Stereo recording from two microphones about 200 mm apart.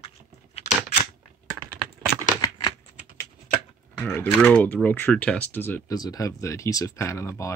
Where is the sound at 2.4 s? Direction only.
20° left (ahead or behind).